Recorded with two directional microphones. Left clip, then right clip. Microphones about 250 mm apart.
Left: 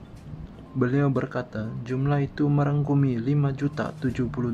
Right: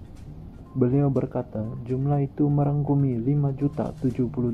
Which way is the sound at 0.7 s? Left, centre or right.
Left.